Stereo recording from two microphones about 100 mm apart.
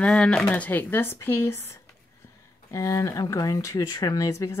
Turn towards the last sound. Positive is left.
turn(degrees=35)  # may be behind; listen again after turning